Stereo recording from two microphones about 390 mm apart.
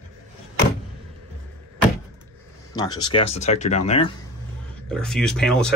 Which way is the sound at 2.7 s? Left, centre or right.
Centre.